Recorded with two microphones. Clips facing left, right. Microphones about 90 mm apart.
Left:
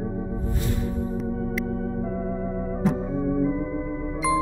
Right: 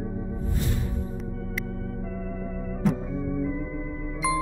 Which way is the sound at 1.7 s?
30° left (ahead or behind).